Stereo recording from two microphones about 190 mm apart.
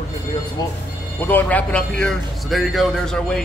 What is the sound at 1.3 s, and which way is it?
A man's voice, 10° left (ahead or behind).